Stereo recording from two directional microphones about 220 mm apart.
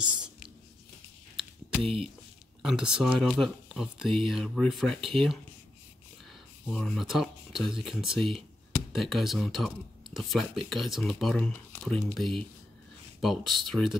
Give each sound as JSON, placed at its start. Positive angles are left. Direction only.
{"t": 1.7, "sound": "a sound", "side_deg": 0}
{"t": 2.6, "sound": "speech", "side_deg": -5}
{"t": 6.7, "sound": "speech", "side_deg": 0}